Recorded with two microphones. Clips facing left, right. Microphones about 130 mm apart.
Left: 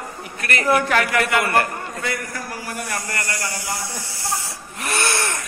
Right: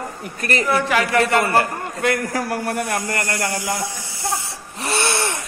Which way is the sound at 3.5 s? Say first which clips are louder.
Right 5 dB; 15° right (ahead or behind).